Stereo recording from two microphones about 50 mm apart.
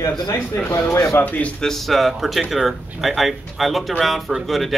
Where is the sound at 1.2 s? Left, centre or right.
Left.